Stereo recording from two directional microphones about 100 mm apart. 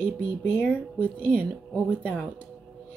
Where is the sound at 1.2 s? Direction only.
15° left (ahead or behind).